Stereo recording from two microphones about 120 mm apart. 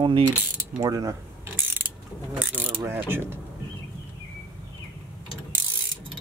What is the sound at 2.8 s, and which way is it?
Mechanisms, 20° right (ahead or behind).